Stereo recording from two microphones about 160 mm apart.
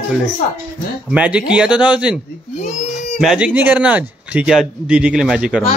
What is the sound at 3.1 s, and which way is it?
A man's voice, 5° right (ahead or behind).